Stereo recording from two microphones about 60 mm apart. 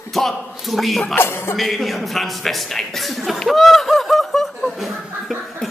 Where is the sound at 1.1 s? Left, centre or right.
Left.